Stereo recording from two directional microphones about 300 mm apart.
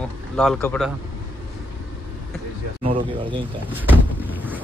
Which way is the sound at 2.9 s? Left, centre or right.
Centre.